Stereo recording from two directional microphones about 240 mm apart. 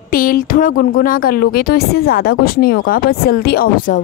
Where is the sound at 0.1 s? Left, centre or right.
Left.